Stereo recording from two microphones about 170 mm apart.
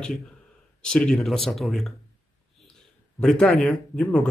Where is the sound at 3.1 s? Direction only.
5° left (ahead or behind).